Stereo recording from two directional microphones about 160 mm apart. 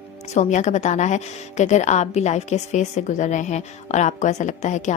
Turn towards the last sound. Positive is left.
turn(degrees=45)  # may be behind; listen again after turning